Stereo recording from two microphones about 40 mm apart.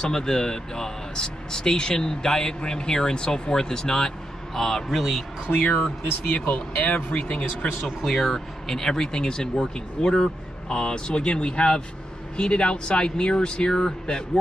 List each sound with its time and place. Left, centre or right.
0.0 s a man's voice: centre
5.5 s speech: left
8.0 s speech: centre; by 14.4 s left